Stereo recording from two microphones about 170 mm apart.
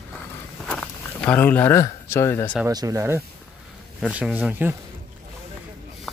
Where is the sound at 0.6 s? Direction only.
5° left (ahead or behind).